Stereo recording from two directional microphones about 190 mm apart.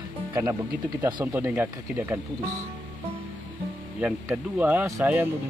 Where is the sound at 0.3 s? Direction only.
15° right (ahead or behind).